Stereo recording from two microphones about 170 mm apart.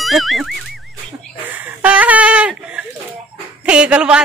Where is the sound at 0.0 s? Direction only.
Centre (ahead or behind).